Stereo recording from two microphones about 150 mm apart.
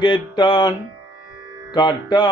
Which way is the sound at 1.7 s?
30° left (ahead or behind).